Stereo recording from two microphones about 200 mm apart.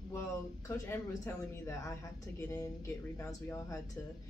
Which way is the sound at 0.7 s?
15° left (ahead or behind).